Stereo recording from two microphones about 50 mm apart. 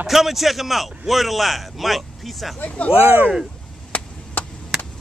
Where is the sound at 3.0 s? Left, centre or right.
Right.